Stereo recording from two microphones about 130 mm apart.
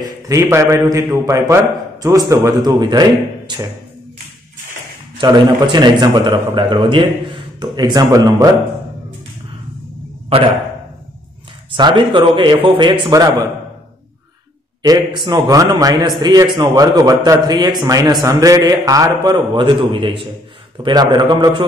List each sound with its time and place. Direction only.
0.0 s a man's voice: 20° right (ahead or behind)
5.2 s a man's voice: 35° right (ahead or behind)
11.7 s a man's voice: 40° right (ahead or behind)
13.1 s a man's voice: 30° right (ahead or behind)
14.8 s a man's voice: 35° right (ahead or behind)